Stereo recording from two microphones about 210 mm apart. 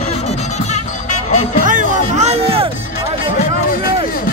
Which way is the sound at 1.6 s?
35° right (ahead or behind).